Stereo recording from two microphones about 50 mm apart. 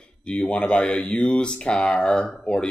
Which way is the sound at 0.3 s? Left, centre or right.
Left.